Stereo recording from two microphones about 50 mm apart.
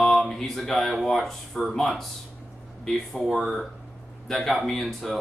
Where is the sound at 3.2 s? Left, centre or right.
Centre.